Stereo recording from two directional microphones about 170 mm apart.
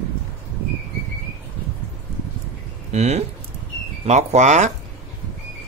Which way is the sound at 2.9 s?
40° right (ahead or behind).